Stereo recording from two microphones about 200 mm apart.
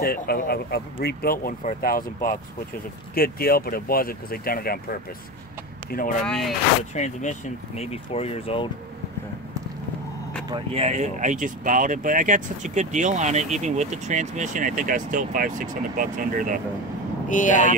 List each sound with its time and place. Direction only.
0.0 s speech: 50° left (ahead or behind)
6.2 s speech: 5° left (ahead or behind)
7.0 s speech: 35° left (ahead or behind)
10.5 s speech: 30° right (ahead or behind)
17.3 s speech: 40° left (ahead or behind)